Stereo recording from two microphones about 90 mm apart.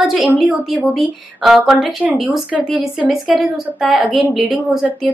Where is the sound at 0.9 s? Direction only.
Centre (ahead or behind).